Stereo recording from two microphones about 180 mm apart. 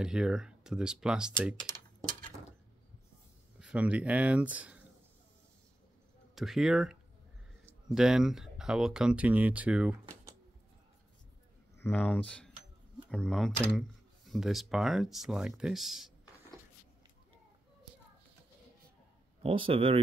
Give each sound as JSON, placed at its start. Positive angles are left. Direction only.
{"t": 0.0, "sound": "speech", "side_deg": -5}
{"t": 3.5, "sound": "speech", "side_deg": -5}
{"t": 6.3, "sound": "speech", "side_deg": 0}
{"t": 11.8, "sound": "speech", "side_deg": 10}
{"t": 19.4, "sound": "speech", "side_deg": -30}